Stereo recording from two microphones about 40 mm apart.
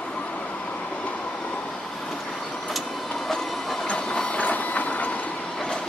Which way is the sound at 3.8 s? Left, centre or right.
Left.